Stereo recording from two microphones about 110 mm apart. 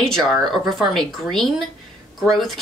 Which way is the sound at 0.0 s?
5° left (ahead or behind).